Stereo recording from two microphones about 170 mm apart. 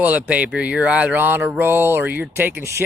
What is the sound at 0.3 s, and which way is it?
A man's voice, 10° right (ahead or behind).